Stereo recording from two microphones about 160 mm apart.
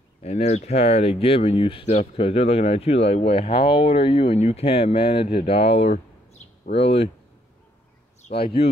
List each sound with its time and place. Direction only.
0.2 s speech: 40° left (ahead or behind)